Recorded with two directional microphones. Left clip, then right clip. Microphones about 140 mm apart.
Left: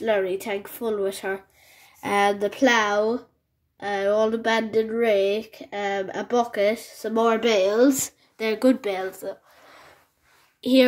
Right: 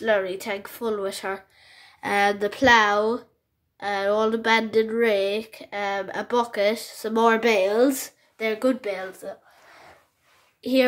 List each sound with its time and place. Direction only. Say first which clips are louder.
0.0 s a woman's voice: even; 5° left (ahead or behind)
8.0 s speech: even; 25° left (ahead or behind)
10.6 s a woman's voice: left 2 dB; 35° left (ahead or behind)